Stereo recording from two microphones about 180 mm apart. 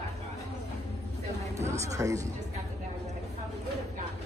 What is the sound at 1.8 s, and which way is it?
Speech, 20° right (ahead or behind).